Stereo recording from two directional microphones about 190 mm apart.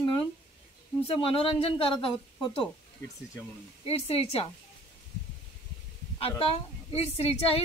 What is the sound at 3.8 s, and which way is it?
Speech, 30° left (ahead or behind).